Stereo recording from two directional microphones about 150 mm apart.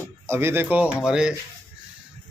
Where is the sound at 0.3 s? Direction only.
15° right (ahead or behind).